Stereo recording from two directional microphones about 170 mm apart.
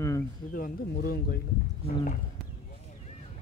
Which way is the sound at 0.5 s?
60° left (ahead or behind).